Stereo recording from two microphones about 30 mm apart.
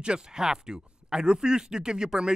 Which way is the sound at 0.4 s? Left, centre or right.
Right.